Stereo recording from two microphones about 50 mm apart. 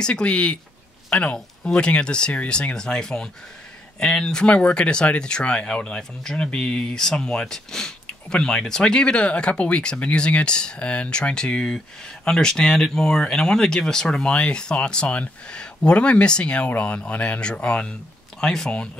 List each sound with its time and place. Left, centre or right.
0.0 s speech: left
18.4 s speech: centre